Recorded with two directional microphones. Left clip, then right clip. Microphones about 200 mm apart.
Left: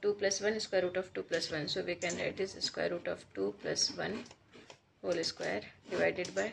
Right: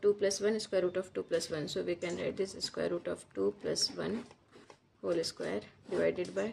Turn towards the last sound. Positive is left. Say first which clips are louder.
# even
turn(degrees=-60)  # may be behind; listen again after turning